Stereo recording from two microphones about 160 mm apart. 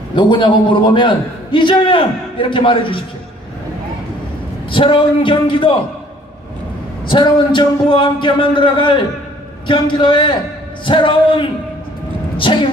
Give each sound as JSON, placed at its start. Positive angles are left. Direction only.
{"t": 0.1, "sound": "a man's voice", "side_deg": 30}
{"t": 4.6, "sound": "a man's voice", "side_deg": 30}
{"t": 7.1, "sound": "a man's voice", "side_deg": 30}